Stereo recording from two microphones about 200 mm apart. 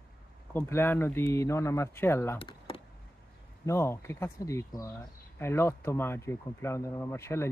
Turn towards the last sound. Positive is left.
turn(degrees=15)  # may be behind; listen again after turning